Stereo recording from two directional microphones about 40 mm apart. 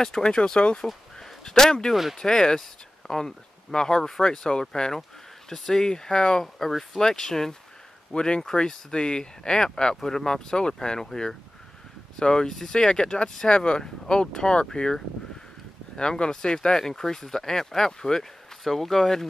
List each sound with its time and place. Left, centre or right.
0.0 s speech: centre
1.4 s speech: centre
8.1 s speech: left
12.2 s speech: centre
16.0 s speech: left